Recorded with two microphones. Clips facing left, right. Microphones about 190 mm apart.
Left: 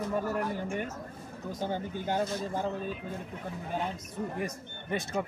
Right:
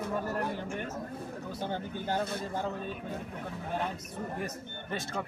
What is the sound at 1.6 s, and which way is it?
Speech, 10° left (ahead or behind).